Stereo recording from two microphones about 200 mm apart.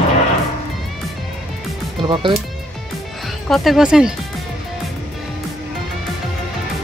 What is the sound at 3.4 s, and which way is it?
Speech, centre (ahead or behind).